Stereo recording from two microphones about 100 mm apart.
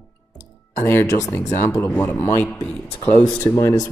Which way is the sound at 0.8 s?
25° left (ahead or behind).